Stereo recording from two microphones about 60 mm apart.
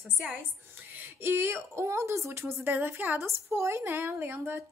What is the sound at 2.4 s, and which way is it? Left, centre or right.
Speech, right.